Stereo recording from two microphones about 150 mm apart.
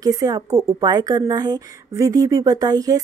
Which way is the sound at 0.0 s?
25° right (ahead or behind).